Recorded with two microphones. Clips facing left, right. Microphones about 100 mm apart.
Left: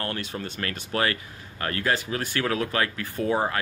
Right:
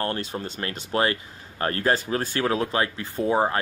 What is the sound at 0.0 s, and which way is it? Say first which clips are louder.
Speech: right 3 dB; 30° right (ahead or behind).